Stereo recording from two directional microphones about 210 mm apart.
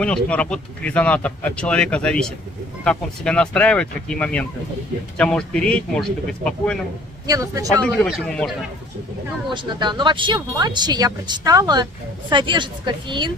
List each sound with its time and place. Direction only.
0.0 s speech: 5° left (ahead or behind)
7.2 s speech: 15° right (ahead or behind)
7.8 s speech: 5° left (ahead or behind)
9.5 s speech: 20° right (ahead or behind)